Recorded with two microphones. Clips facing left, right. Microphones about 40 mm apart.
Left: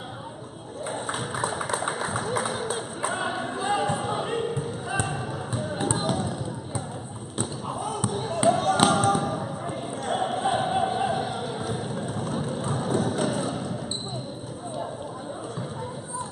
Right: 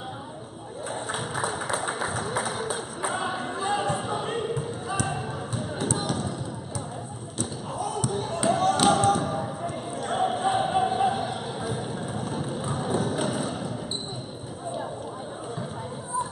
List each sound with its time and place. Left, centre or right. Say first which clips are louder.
1.0 s a sound: even; centre
1.7 s music: left 1 dB; centre
5.8 s basketball bounce: left 2 dB; centre
7.3 s basketball bounce: left 1 dB; left
8.1 s basketball bounce: even; centre
8.5 s a sound: left 1 dB; centre
8.9 s basketball bounce: even; centre
10.0 s music: right 1 dB; centre